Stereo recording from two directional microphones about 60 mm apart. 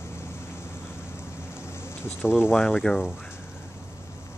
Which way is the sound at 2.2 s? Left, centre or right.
Centre.